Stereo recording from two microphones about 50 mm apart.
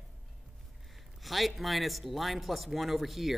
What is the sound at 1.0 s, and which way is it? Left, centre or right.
Speech, centre.